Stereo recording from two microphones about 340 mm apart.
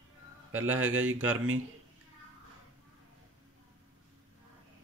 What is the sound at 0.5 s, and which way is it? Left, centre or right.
Speech, right.